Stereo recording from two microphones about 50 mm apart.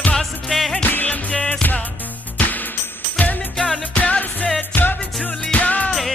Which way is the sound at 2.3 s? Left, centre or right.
Left.